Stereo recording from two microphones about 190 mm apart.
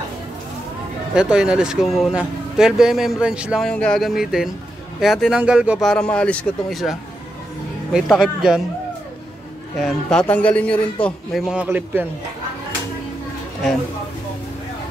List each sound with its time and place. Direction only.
1.1 s speech: 5° right (ahead or behind)
9.8 s speech: 5° left (ahead or behind)